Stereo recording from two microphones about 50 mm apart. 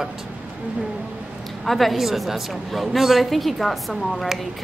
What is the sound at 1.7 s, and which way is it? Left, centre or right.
A woman's voice, centre.